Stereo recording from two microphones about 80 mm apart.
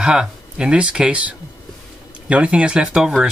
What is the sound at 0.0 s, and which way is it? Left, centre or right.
Speech, centre.